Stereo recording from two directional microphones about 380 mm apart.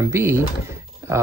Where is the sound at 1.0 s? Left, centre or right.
Centre.